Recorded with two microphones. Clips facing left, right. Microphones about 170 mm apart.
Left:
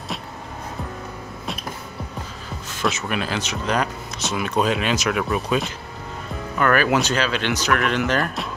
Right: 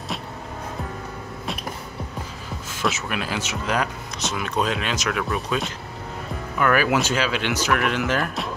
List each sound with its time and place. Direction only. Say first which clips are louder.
2.8 s speech: left 2 dB; 5° right (ahead or behind)
6.6 s speech: left 1 dB; 10° right (ahead or behind)